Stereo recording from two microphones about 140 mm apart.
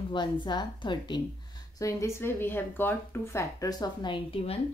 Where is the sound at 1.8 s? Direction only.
20° left (ahead or behind); by 4.6 s 40° left (ahead or behind).